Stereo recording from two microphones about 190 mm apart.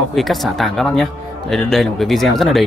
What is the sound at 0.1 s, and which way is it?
Speech, centre (ahead or behind).